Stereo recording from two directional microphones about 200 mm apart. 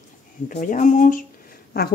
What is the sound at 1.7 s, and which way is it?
Speech, 50° left (ahead or behind).